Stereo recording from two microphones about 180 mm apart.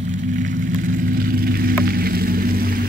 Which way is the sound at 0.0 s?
45° right (ahead or behind).